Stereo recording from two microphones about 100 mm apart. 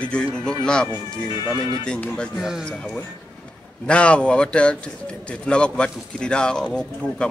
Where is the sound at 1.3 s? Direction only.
45° left (ahead or behind).